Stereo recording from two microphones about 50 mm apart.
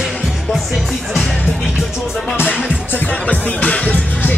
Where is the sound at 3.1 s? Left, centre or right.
Left.